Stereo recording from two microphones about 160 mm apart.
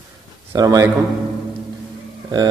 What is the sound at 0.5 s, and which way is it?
Speech, 20° right (ahead or behind).